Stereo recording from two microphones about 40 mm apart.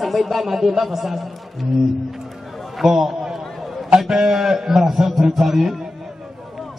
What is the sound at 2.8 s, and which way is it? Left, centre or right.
A man's voice, centre.